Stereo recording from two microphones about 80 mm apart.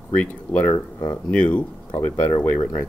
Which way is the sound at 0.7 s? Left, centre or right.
Left.